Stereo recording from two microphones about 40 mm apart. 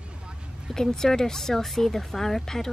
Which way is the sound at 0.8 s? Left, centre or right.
Centre.